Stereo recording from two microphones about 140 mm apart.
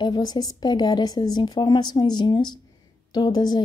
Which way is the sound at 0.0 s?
30° left (ahead or behind).